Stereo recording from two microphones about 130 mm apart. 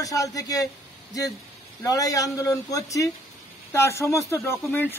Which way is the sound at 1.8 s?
25° left (ahead or behind).